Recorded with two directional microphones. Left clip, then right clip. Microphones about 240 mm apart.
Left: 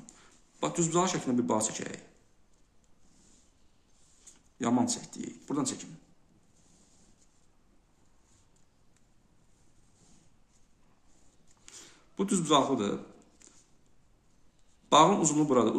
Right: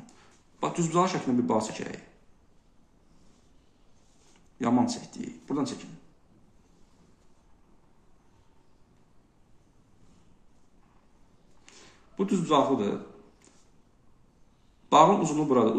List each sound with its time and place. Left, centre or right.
0.6 s speech: centre
4.6 s speech: left
11.6 s a sound: left
14.9 s speech: left